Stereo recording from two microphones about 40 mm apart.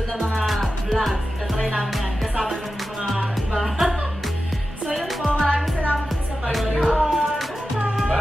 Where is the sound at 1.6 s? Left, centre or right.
Centre.